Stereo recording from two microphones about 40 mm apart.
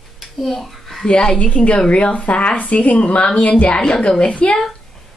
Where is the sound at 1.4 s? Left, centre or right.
Left.